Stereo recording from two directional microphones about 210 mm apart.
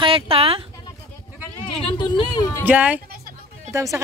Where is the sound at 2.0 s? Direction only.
20° left (ahead or behind).